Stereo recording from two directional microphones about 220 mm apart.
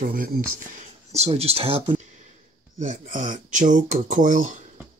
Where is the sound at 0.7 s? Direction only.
30° right (ahead or behind).